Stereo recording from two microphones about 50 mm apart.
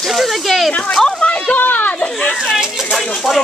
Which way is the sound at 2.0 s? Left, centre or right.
Centre.